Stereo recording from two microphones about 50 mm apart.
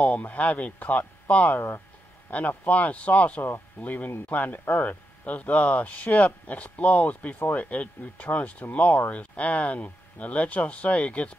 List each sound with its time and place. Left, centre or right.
0.0 s speech: left